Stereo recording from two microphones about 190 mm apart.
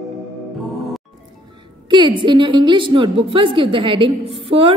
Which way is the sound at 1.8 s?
25° right (ahead or behind).